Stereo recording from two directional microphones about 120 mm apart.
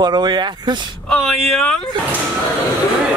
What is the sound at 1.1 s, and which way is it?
Speech, 5° left (ahead or behind).